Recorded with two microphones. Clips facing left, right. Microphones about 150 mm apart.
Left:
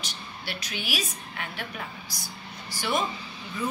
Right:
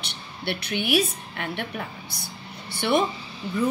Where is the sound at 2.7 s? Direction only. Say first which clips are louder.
Right 6 dB; 60° right (ahead or behind).